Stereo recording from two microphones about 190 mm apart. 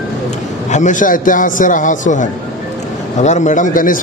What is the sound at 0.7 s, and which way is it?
A man's voice, 40° left (ahead or behind).